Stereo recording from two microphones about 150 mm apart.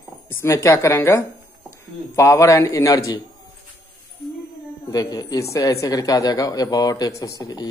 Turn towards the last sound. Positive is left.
turn(degrees=25)  # may be behind; listen again after turning